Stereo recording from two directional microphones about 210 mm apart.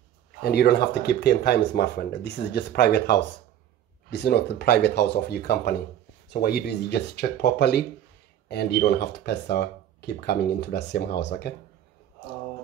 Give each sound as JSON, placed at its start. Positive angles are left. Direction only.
{"t": 0.4, "sound": "speech", "side_deg": 50}